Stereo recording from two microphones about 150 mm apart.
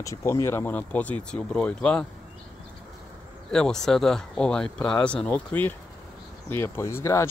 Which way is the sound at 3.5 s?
5° left (ahead or behind).